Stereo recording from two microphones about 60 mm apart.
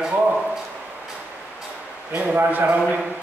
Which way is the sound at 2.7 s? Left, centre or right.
Right.